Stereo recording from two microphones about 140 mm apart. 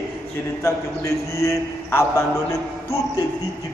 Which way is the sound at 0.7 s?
20° left (ahead or behind).